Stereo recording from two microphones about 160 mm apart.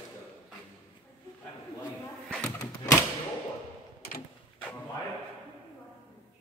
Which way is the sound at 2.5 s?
15° left (ahead or behind).